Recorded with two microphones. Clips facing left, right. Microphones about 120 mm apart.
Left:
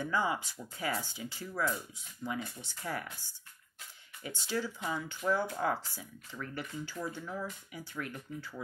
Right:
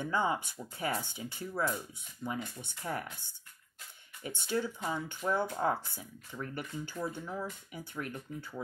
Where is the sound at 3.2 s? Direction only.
60° right (ahead or behind).